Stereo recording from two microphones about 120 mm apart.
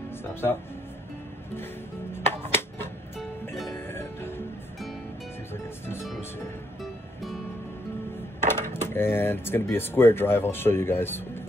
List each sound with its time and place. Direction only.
0.2 s speech: 20° left (ahead or behind)
3.7 s music: 20° left (ahead or behind)
5.5 s music: 20° left (ahead or behind)
6.8 s music: centre (ahead or behind)
8.4 s speech: 20° left (ahead or behind)